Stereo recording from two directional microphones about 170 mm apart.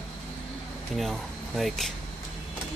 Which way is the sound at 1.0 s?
Centre (ahead or behind).